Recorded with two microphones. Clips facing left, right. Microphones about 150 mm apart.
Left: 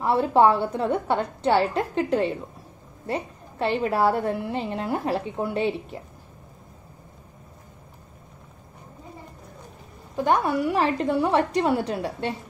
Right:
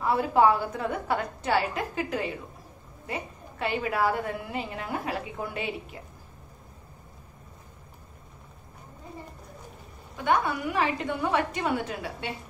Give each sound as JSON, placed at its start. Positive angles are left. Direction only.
{"t": 0.0, "sound": "a woman's voice", "side_deg": 30}
{"t": 10.1, "sound": "a woman's voice", "side_deg": 35}